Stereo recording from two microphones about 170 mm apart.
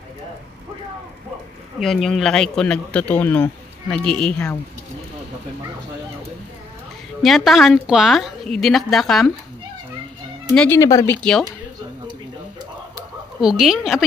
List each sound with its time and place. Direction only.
1.8 s a woman's voice: centre (ahead or behind)
7.2 s a woman's voice: centre (ahead or behind)
10.5 s a woman's voice: 5° left (ahead or behind)
10.8 s speech: 20° left (ahead or behind)
11.2 s a woman's voice: centre (ahead or behind)
13.4 s a woman's voice: 5° right (ahead or behind)